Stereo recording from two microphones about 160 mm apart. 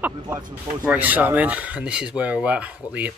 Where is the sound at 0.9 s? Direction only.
10° right (ahead or behind).